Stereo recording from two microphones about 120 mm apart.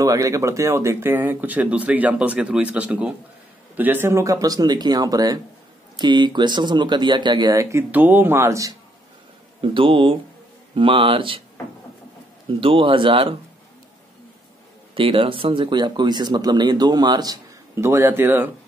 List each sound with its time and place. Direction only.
0.0 s speech: 30° right (ahead or behind)
7.7 s speech: 15° right (ahead or behind)
9.6 s speech: 45° right (ahead or behind)
12.5 s speech: 50° right (ahead or behind)
15.0 s speech: 50° right (ahead or behind)
17.7 s speech: 20° right (ahead or behind)